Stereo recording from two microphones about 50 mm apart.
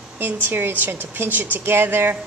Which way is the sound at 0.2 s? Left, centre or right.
Right.